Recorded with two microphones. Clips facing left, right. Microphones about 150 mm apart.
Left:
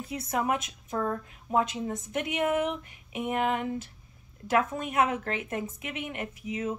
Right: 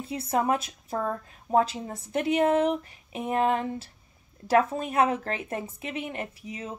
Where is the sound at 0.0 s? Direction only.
30° right (ahead or behind).